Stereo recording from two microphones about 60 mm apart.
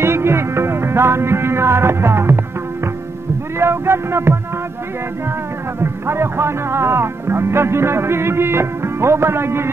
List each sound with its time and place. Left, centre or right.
0.0 s music: right
3.5 s music: right
5.8 s music: right